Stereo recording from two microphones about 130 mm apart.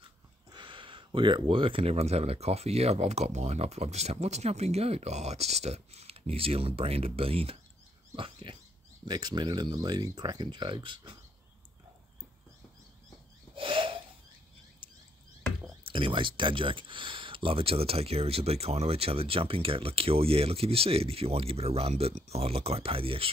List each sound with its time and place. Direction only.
0.5 s speech: 40° right (ahead or behind)
8.2 s dog: 40° right (ahead or behind)
9.0 s speech: 35° right (ahead or behind)
13.6 s a sound: 40° right (ahead or behind)
15.8 s speech: 40° right (ahead or behind)